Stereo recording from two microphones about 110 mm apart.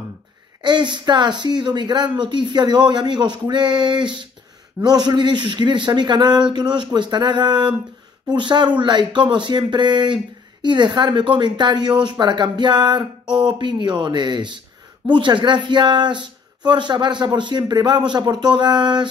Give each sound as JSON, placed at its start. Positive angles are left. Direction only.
{"t": 0.6, "sound": "speech", "side_deg": -45}